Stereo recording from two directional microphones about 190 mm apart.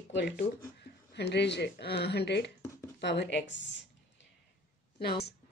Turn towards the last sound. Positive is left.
turn(degrees=60)  # may be behind; listen again after turning